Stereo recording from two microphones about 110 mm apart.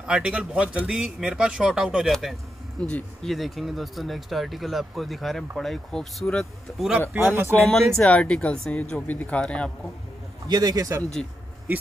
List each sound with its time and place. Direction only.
0.0 s speech: 10° right (ahead or behind)
2.8 s speech: 10° left (ahead or behind)
3.3 s speech: centre (ahead or behind)
7.2 s speech: 20° right (ahead or behind)
7.6 s speech: 5° left (ahead or behind)
10.5 s speech: 35° right (ahead or behind)